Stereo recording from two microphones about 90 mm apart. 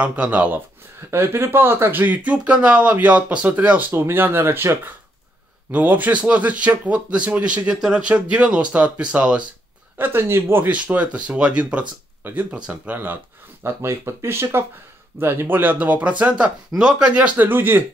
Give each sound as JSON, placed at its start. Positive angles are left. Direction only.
{"t": 0.0, "sound": "speech", "side_deg": -15}
{"t": 1.1, "sound": "speech", "side_deg": -30}
{"t": 9.9, "sound": "speech", "side_deg": -25}